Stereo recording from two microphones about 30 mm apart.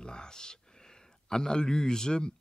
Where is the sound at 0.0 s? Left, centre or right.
Left.